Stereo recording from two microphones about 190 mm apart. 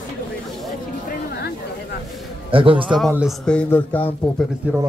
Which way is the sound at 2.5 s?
25° right (ahead or behind).